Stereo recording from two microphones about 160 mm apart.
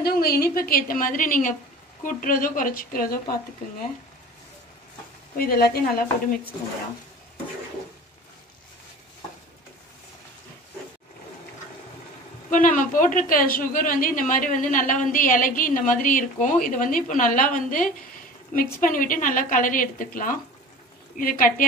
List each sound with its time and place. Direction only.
0.0 s a woman's voice: 75° left (ahead or behind)
5.4 s a woman's voice: 70° left (ahead or behind)
12.4 s a woman's voice: 55° left (ahead or behind)